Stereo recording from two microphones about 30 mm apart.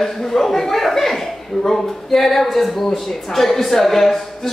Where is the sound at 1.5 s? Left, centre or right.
Left.